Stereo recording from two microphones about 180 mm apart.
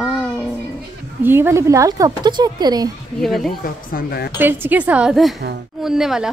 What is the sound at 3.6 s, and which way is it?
Speech, 55° left (ahead or behind).